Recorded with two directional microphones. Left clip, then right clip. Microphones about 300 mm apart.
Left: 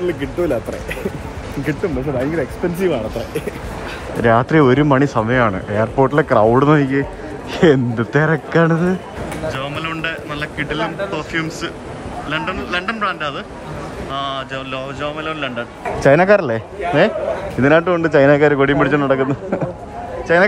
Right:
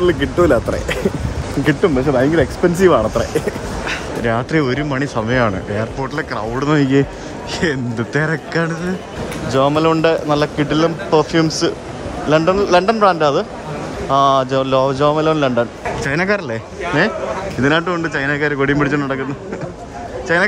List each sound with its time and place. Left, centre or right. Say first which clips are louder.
0.0 s a man's voice: right 6 dB; centre
2.3 s a man's voice: right 6 dB; centre
4.2 s speech: left 6 dB; centre
9.5 s a man's voice: right 12 dB; centre
16.0 s speech: left 8 dB; centre
20.3 s speech: left 2 dB; centre